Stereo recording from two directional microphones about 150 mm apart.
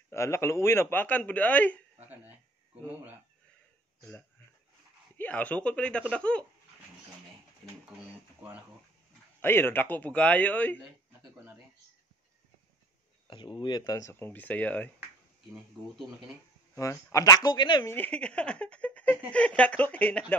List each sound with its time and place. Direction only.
0.1 s speech: 20° left (ahead or behind)
2.0 s a sound: 10° right (ahead or behind)
2.8 s speech: 10° right (ahead or behind)
5.1 s speech: 10° left (ahead or behind)
9.4 s speech: 15° left (ahead or behind)
13.3 s speech: 35° left (ahead or behind); by 14.9 s 10° left (ahead or behind)
16.7 s speech: 20° left (ahead or behind)
17.8 s speech: 10° left (ahead or behind)